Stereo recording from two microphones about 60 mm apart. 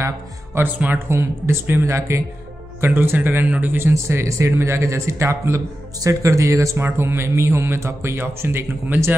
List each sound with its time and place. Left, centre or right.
0.6 s speech: right
0.9 s speech: right
2.8 s speech: right
3.9 s speech: right
5.9 s speech: right
6.8 s speech: right